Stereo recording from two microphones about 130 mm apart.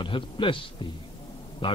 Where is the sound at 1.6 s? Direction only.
40° left (ahead or behind).